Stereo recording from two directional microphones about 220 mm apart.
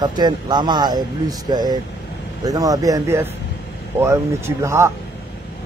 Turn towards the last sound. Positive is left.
turn(degrees=-10)  # may be behind; listen again after turning